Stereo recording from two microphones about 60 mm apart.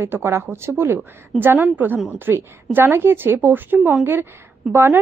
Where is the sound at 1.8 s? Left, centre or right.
Right.